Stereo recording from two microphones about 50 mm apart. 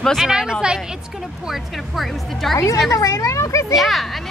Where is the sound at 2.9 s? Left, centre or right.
Left.